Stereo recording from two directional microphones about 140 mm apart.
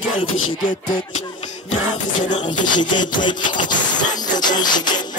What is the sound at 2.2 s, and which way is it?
Speech, 65° left (ahead or behind).